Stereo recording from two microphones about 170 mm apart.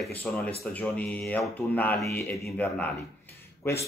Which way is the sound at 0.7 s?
10° left (ahead or behind).